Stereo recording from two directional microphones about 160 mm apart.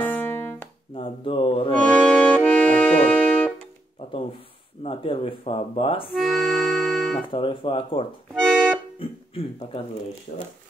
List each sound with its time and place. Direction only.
0.0 s music: 10° left (ahead or behind)
0.9 s a sound: 35° left (ahead or behind)
1.7 s accordion: 10° left (ahead or behind)
4.8 s speech: 35° left (ahead or behind)
6.1 s accordion: centre (ahead or behind)
7.2 s speech: 35° left (ahead or behind)
8.4 s accordion: centre (ahead or behind)
9.0 s speech: 35° left (ahead or behind)